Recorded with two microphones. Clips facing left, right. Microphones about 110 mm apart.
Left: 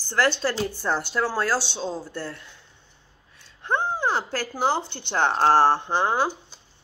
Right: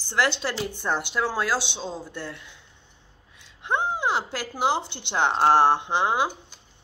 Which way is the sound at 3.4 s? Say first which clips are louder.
Left 1 dB; 15° right (ahead or behind).